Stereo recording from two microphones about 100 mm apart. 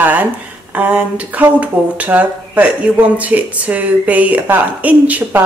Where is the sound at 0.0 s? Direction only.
15° right (ahead or behind).